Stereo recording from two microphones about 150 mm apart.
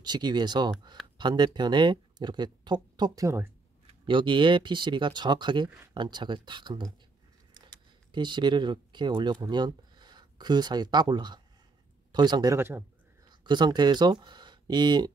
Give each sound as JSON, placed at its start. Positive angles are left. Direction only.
{"t": 0.0, "sound": "speech", "side_deg": -30}
{"t": 4.0, "sound": "speech", "side_deg": -35}
{"t": 12.5, "sound": "speech", "side_deg": -15}
{"t": 13.3, "sound": "speech", "side_deg": -30}